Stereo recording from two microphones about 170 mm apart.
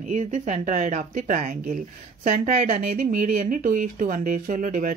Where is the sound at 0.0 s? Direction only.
45° right (ahead or behind).